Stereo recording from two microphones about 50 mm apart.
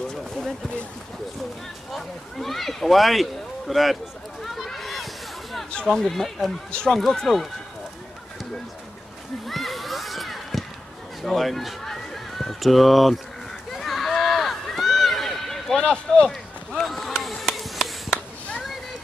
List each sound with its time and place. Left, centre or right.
1.9 s speech: centre
4.6 s a sound: centre
5.7 s speech: centre
5.9 s speech: centre
9.5 s a sound: centre
11.2 s speech: centre
13.7 s run: centre
15.7 s speech: centre
16.3 s run: centre
17.2 s a sound: centre